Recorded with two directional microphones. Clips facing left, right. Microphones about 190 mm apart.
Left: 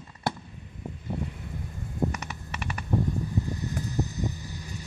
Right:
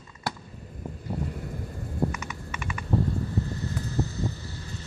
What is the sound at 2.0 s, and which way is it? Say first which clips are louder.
Computer keyboard: even; 35° left (ahead or behind).